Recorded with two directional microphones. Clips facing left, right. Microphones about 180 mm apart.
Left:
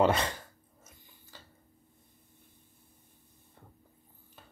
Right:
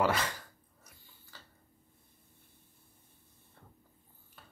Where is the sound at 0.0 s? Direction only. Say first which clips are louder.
Left 4 dB; 25° left (ahead or behind).